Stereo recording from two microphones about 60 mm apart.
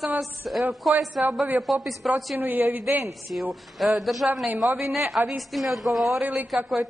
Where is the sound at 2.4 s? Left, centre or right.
Right.